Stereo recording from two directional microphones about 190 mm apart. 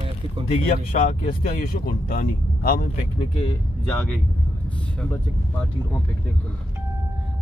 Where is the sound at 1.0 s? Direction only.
50° left (ahead or behind).